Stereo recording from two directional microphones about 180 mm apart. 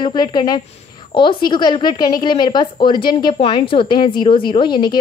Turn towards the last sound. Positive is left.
turn(degrees=25)  # may be behind; listen again after turning